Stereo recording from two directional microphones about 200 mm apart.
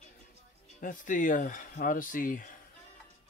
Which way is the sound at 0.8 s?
40° left (ahead or behind).